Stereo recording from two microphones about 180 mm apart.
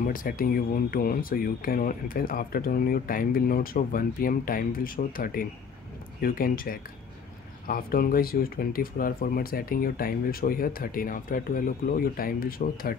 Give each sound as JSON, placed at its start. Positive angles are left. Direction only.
{"t": 0.0, "sound": "speech", "side_deg": 50}